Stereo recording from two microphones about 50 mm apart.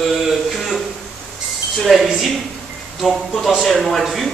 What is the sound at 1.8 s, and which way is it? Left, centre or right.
Speech, centre.